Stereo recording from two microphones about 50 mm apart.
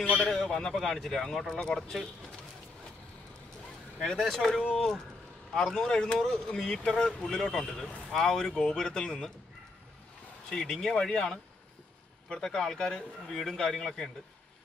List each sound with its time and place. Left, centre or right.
0.0 s a man's voice: left
0.3 s a man's voice: centre
4.0 s a man's voice: centre
10.5 s a man's voice: centre
12.4 s a man's voice: centre